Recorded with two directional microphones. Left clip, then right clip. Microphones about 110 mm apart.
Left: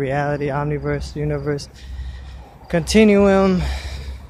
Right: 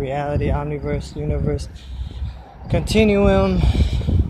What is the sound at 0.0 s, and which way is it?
Speech, 45° left (ahead or behind).